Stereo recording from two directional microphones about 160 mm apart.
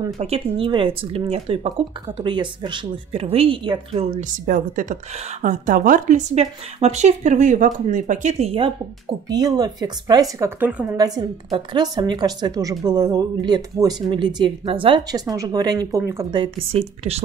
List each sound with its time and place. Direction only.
0.2 s speech: 35° right (ahead or behind)
4.5 s a woman's voice: 55° right (ahead or behind); by 8.7 s 35° right (ahead or behind)
9.3 s a woman's voice: 25° right (ahead or behind)
10.6 s a woman's voice: 10° right (ahead or behind)
11.0 s a woman's voice: 25° right (ahead or behind)
16.3 s speech: 30° right (ahead or behind)